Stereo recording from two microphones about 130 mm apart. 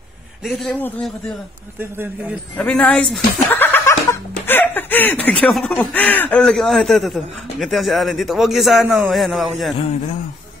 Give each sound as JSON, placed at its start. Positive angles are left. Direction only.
{"t": 0.4, "sound": "a man's voice", "side_deg": 0}
{"t": 1.8, "sound": "speech", "side_deg": -15}
{"t": 2.5, "sound": "a man's voice", "side_deg": 10}